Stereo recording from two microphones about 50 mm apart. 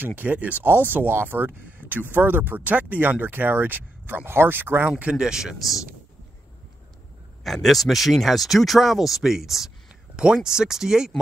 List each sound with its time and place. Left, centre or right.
0.0 s speech: right
0.7 s speech: right
4.8 s speech: right
5.1 s speech: centre
7.4 s speech: centre